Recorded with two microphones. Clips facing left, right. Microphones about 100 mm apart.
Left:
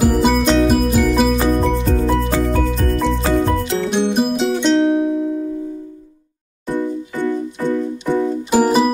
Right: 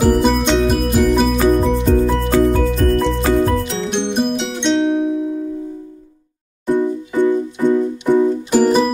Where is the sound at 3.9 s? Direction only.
5° left (ahead or behind).